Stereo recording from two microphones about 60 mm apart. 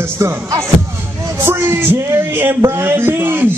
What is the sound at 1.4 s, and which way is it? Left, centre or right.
Speech, right.